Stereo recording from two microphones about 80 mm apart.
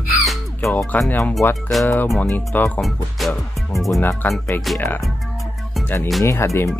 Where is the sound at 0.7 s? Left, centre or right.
Centre.